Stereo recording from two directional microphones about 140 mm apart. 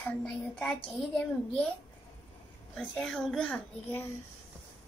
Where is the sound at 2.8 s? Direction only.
5° left (ahead or behind).